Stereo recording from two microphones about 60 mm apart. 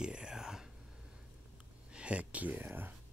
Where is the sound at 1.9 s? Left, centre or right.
Centre.